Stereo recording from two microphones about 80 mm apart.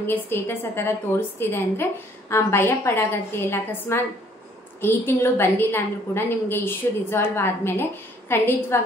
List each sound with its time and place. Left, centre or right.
0.0 s a woman's voice: left